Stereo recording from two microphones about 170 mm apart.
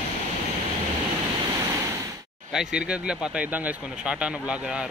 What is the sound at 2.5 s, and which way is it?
A man's voice, 5° right (ahead or behind).